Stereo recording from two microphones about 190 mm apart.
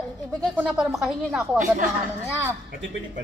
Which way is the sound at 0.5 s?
5° right (ahead or behind).